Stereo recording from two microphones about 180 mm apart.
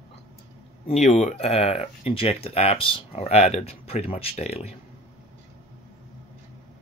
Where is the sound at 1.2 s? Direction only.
40° left (ahead or behind).